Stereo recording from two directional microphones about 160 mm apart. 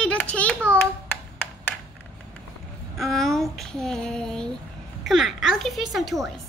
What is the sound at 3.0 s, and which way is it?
Child singing, centre (ahead or behind).